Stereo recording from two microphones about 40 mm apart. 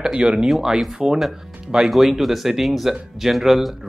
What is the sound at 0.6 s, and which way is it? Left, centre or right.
Speech, centre.